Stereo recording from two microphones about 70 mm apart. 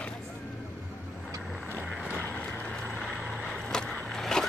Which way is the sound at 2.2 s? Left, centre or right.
Left.